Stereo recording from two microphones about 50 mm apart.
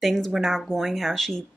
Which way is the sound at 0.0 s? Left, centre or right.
Centre.